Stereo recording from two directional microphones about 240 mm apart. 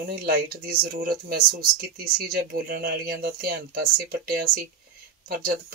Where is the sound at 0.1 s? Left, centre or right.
Right.